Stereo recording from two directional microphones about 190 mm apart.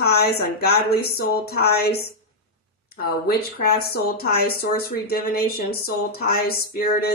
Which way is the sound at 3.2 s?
55° left (ahead or behind).